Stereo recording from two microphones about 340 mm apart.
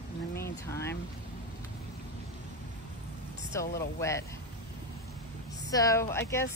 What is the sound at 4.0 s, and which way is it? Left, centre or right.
Speech, centre.